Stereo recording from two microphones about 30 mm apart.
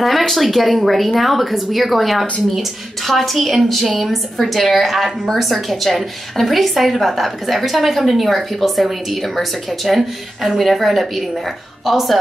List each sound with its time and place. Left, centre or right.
0.3 s a woman's voice: centre